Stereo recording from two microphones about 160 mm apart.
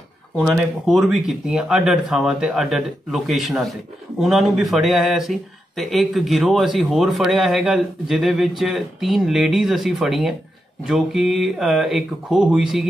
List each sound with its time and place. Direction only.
0.4 s speech: centre (ahead or behind)